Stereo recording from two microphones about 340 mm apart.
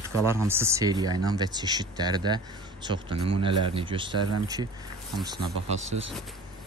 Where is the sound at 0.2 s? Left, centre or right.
Centre.